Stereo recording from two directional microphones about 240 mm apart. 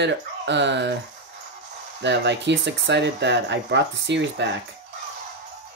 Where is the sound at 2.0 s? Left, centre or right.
Right.